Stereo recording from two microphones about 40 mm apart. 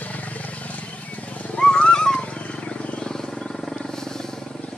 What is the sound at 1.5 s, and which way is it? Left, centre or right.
Wild animals, left.